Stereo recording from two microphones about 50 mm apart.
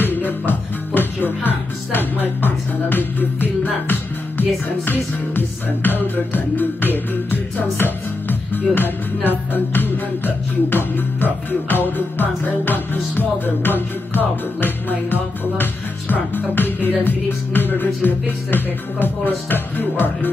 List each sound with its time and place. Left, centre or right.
0.0 s music: left